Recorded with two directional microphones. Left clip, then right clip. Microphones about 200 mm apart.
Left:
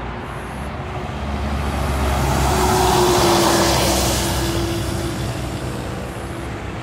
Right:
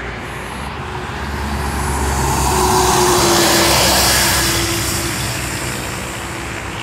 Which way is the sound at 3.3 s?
45° right (ahead or behind).